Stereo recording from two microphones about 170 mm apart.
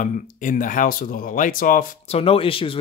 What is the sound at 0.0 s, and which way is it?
Speech, 50° left (ahead or behind).